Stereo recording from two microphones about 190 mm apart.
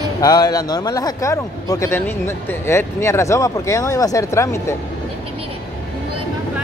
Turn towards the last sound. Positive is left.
turn(degrees=15)  # may be behind; listen again after turning